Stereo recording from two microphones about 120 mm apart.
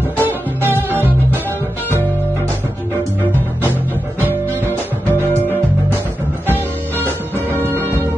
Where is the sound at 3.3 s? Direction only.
15° right (ahead or behind).